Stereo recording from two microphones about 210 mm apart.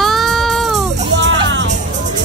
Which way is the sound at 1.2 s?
60° right (ahead or behind).